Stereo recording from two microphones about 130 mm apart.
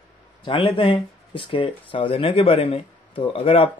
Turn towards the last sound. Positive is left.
turn(degrees=45)  # may be behind; listen again after turning